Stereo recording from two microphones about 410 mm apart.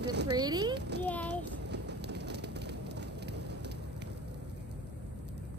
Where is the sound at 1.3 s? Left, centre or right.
Right.